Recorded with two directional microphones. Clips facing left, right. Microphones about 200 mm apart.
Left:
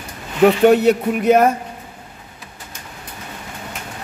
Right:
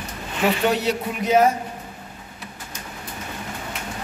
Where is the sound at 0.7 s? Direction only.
55° left (ahead or behind).